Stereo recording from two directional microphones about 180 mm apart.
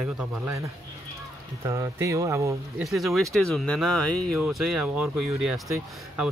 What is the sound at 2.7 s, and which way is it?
Speech, centre (ahead or behind).